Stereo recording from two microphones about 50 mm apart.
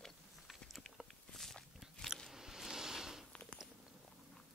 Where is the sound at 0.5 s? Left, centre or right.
Centre.